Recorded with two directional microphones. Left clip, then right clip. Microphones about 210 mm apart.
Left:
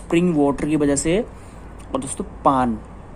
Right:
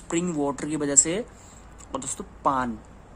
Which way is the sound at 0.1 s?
10° right (ahead or behind).